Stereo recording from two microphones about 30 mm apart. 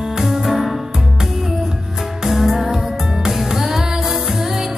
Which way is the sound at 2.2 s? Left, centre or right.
Centre.